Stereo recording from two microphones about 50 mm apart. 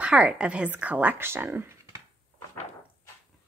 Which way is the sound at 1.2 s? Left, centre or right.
Right.